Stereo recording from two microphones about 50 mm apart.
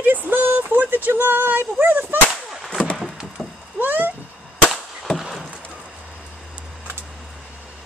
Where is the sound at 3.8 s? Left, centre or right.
Right.